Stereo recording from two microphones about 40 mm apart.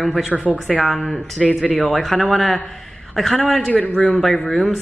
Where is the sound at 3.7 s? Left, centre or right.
Left.